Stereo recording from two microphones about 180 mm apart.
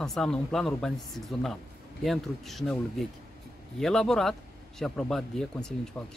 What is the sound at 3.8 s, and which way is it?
Speech, centre (ahead or behind).